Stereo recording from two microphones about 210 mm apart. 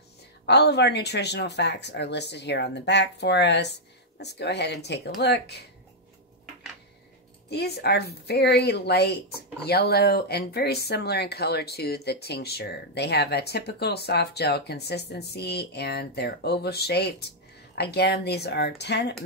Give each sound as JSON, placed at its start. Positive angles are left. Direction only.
{"t": 0.5, "sound": "speech", "side_deg": 55}
{"t": 7.4, "sound": "speech", "side_deg": 50}